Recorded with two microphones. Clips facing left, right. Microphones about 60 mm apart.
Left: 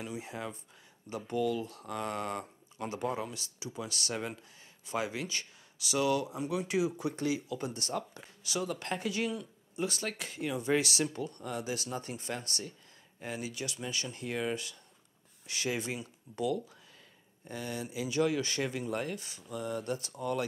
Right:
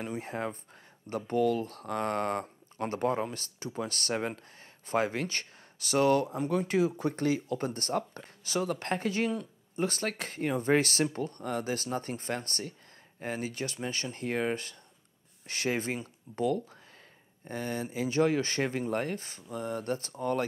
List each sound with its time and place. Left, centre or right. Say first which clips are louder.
0.0 s speech: right 5 dB; right